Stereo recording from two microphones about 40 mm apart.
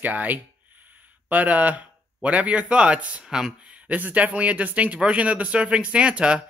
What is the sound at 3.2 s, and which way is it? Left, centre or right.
Speech, centre.